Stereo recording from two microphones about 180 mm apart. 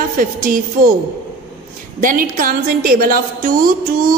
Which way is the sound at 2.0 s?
50° right (ahead or behind).